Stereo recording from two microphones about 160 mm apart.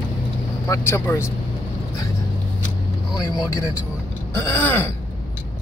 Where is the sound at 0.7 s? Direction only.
15° left (ahead or behind).